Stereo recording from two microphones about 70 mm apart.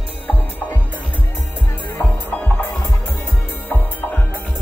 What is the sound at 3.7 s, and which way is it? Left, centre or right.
Music, left.